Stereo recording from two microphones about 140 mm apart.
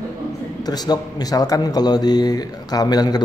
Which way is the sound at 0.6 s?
30° left (ahead or behind).